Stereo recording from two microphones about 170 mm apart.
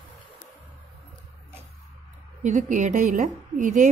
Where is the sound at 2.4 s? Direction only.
50° right (ahead or behind).